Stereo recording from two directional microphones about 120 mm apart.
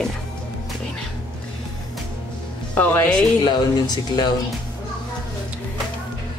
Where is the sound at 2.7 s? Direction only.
15° left (ahead or behind).